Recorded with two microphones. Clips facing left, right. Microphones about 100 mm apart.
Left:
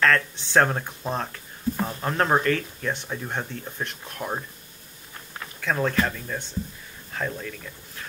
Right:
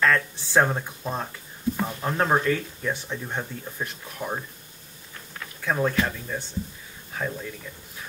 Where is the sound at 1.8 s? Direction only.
5° right (ahead or behind).